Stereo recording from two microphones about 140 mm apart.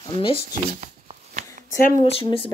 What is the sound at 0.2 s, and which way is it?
Speech, 40° left (ahead or behind).